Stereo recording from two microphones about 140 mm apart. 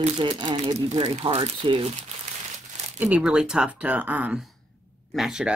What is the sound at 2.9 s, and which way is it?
Speech, 10° right (ahead or behind).